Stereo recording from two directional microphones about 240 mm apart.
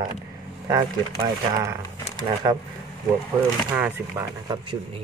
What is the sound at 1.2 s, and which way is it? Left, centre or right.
Speech, centre.